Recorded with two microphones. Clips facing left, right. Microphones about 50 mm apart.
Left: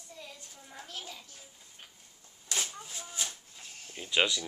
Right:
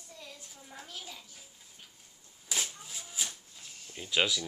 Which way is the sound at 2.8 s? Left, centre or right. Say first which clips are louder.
Left 1 dB; centre.